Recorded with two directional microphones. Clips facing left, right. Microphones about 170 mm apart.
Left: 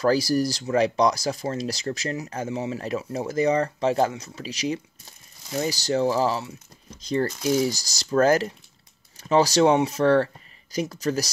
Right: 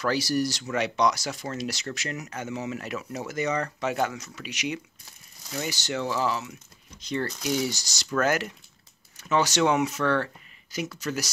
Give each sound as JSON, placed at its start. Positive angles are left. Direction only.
{"t": 0.0, "sound": "speech", "side_deg": 30}